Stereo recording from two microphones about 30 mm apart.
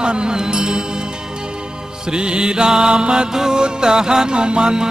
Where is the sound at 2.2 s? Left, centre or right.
Right.